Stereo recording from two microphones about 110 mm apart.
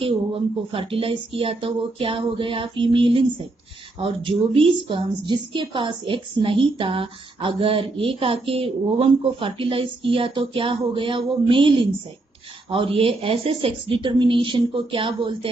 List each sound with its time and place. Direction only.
0.0 s a woman's voice: 55° right (ahead or behind)